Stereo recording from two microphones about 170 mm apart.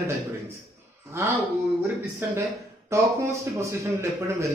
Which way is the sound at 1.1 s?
15° right (ahead or behind).